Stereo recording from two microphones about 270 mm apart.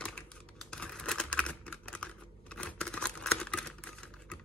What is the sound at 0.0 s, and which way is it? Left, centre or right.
Computer keyboard, centre.